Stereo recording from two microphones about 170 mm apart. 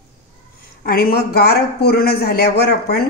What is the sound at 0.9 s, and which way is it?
Speech, 65° left (ahead or behind).